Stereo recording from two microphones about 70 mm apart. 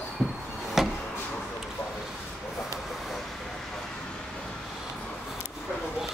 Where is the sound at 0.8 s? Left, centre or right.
Centre.